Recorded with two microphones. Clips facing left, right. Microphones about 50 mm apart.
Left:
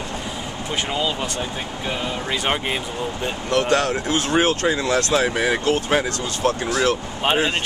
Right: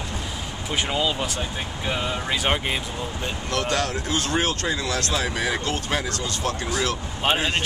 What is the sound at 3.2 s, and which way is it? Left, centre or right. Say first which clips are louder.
Speech: left 6 dB; centre.